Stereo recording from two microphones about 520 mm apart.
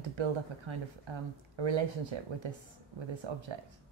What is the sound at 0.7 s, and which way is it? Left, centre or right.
A woman's voice, right.